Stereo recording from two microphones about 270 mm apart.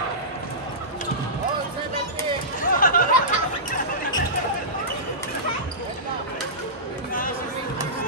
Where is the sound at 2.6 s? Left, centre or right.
Left.